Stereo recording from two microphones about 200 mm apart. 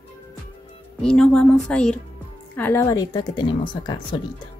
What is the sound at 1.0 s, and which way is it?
Speech, 5° left (ahead or behind).